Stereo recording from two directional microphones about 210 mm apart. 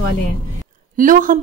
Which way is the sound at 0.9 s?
40° right (ahead or behind).